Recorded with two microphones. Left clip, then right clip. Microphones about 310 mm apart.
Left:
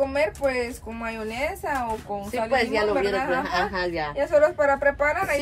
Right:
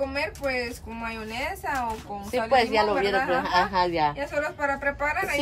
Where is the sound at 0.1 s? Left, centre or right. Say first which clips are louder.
Left 4 dB; centre.